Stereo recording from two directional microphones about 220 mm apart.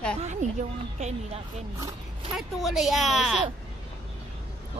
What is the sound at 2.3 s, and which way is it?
A woman's voice, centre (ahead or behind).